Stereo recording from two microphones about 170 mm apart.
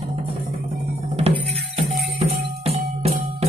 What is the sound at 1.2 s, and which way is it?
Music, 35° right (ahead or behind).